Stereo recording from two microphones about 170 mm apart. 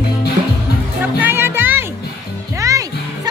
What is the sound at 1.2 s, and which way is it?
Music, 15° right (ahead or behind).